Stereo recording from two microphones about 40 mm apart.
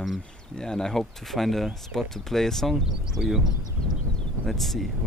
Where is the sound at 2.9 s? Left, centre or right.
Centre.